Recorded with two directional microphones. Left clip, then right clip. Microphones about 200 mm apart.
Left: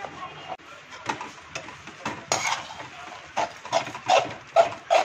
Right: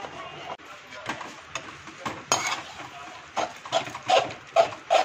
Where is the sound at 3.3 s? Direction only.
5° right (ahead or behind).